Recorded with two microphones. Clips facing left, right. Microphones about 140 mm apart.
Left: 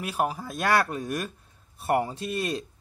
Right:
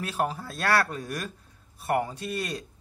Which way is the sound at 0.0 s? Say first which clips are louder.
Left 1 dB; 10° left (ahead or behind).